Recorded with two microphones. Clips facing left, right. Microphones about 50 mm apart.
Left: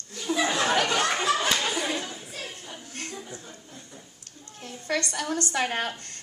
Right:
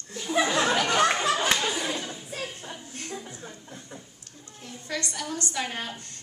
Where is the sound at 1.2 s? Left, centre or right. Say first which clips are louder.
Even; centre.